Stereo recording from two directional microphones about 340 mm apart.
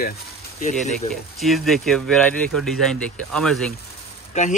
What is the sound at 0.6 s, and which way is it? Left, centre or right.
Speech, left.